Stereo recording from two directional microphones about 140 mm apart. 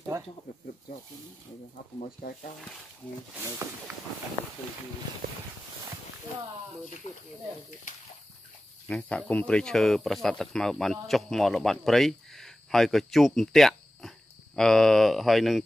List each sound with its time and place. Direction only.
0.1 s snake: 20° right (ahead or behind)
2.0 s speech: 65° left (ahead or behind)
3.3 s speech: 15° right (ahead or behind)
7.0 s speech: 55° left (ahead or behind)
8.8 s speech: 10° left (ahead or behind)